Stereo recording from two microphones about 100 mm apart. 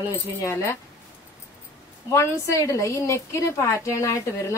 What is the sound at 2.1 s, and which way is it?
A woman's voice, 30° left (ahead or behind).